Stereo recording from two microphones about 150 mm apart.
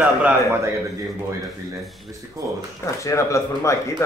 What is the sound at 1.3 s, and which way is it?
Speech, 20° right (ahead or behind).